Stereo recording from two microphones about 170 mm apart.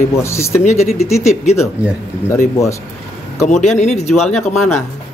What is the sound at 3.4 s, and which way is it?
Speech, 45° left (ahead or behind).